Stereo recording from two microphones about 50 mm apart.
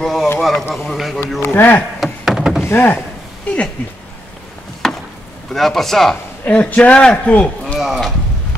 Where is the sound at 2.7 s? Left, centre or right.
Left.